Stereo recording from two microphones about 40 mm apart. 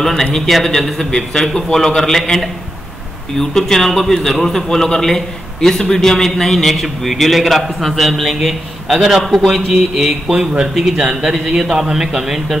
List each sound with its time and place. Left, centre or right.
0.0 s a man's voice: centre
10.3 s a man's voice: right
10.6 s a man's voice: centre